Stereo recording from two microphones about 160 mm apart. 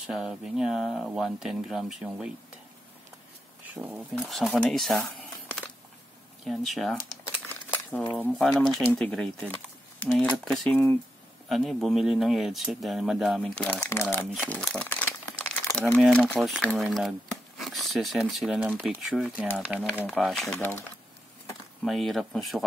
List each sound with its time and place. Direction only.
0.0 s speech: 5° right (ahead or behind)
3.7 s speech: 10° right (ahead or behind)
4.1 s speech: 5° left (ahead or behind)
16.0 s speech: 5° left (ahead or behind)
21.8 s speech: centre (ahead or behind)